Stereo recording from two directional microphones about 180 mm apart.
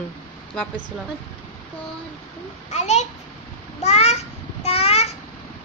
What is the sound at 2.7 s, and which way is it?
Speech, 40° left (ahead or behind).